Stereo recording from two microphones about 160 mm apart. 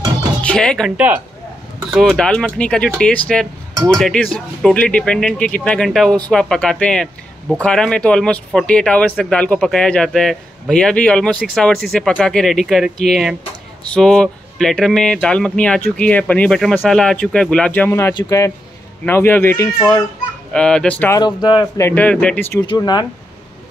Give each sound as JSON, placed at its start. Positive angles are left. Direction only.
{"t": 0.4, "sound": "speech", "side_deg": 5}
{"t": 0.9, "sound": "a man's voice", "side_deg": -10}
{"t": 1.9, "sound": "speech", "side_deg": 0}
{"t": 21.2, "sound": "speech", "side_deg": 30}
{"t": 21.8, "sound": "speech", "side_deg": 10}
{"t": 22.7, "sound": "speech", "side_deg": 25}